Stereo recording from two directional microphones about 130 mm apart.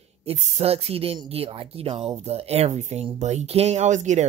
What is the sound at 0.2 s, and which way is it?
A woman's voice, 55° right (ahead or behind).